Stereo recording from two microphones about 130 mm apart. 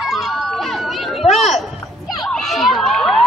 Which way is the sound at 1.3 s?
Centre (ahead or behind).